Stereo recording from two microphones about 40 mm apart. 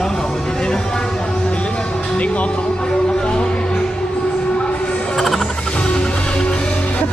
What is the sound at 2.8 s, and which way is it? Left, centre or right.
Music, left.